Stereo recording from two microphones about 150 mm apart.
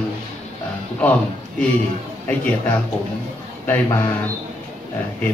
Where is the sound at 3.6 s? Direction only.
15° left (ahead or behind).